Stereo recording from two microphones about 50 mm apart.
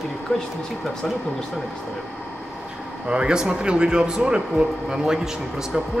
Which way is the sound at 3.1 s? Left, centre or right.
Centre.